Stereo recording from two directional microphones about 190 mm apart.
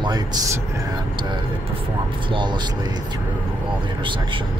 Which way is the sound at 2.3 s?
25° right (ahead or behind).